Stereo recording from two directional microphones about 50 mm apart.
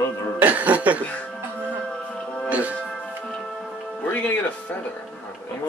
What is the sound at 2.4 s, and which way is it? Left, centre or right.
Music, right.